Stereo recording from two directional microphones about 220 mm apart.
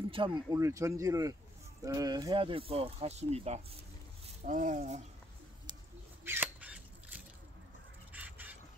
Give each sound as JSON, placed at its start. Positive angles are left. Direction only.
{"t": 0.1, "sound": "speech", "side_deg": -20}
{"t": 6.2, "sound": "a sound", "side_deg": -10}
{"t": 8.1, "sound": "duck", "side_deg": -5}